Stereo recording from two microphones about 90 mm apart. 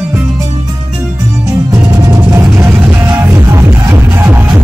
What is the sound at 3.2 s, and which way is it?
Music, 30° right (ahead or behind).